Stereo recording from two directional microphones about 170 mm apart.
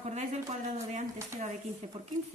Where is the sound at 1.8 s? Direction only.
40° right (ahead or behind).